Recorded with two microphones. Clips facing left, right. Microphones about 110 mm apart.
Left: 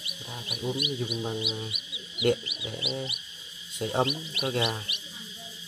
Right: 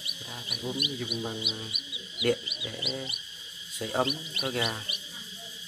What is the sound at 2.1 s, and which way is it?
Speech, 25° left (ahead or behind).